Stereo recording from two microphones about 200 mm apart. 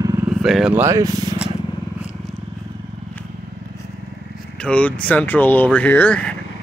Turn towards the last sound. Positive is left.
turn(degrees=5)  # may be behind; listen again after turning